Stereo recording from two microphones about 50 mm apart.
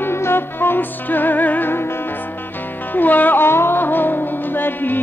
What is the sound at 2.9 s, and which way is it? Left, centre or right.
Music, left.